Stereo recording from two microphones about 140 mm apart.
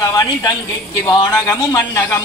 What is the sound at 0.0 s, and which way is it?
A woman's voice, 25° left (ahead or behind).